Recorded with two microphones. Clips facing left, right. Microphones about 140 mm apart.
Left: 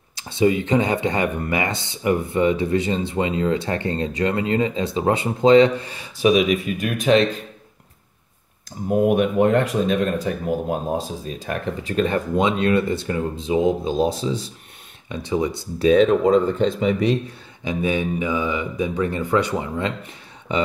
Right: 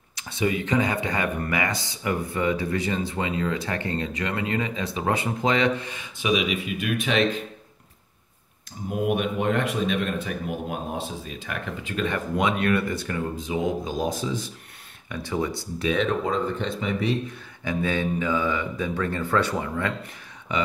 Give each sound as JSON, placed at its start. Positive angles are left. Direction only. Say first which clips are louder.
{"t": 0.1, "sound": "speech", "louder": "left 7 dB", "side_deg": 30}
{"t": 8.8, "sound": "speech", "louder": "left 7 dB", "side_deg": 40}
{"t": 12.4, "sound": "speech", "louder": "left 4 dB", "side_deg": 25}
{"t": 15.8, "sound": "speech", "louder": "left 9 dB", "side_deg": 35}
{"t": 17.6, "sound": "speech", "louder": "left 3 dB", "side_deg": 15}